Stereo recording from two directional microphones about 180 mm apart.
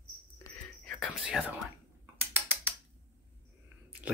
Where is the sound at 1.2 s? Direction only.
5° right (ahead or behind).